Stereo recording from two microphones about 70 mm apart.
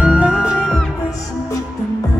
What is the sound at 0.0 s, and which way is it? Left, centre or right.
Music, centre.